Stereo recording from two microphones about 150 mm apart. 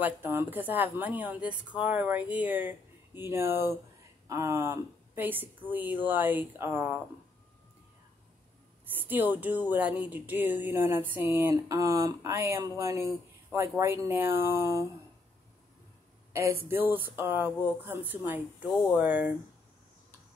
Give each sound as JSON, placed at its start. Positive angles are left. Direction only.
{"t": 0.0, "sound": "speech", "side_deg": -15}
{"t": 8.9, "sound": "speech", "side_deg": -15}
{"t": 16.6, "sound": "speech", "side_deg": -15}